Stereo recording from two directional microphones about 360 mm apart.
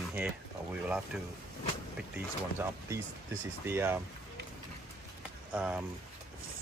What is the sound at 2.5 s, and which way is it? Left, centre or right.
Speech, centre.